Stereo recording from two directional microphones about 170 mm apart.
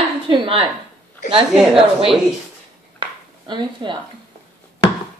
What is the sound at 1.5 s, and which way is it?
Speech, centre (ahead or behind).